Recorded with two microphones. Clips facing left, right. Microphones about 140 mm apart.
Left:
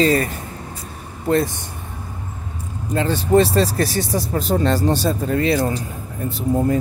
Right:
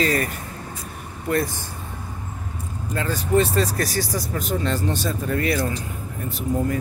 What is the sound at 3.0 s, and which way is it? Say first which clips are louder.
Speech: left 5 dB; 30° left (ahead or behind).